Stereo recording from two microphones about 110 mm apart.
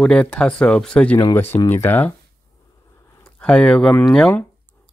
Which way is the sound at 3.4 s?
10° left (ahead or behind).